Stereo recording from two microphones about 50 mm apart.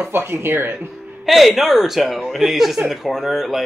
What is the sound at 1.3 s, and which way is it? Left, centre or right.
Speech, centre.